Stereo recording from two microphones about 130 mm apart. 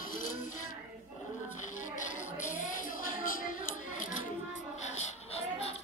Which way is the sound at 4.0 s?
80° left.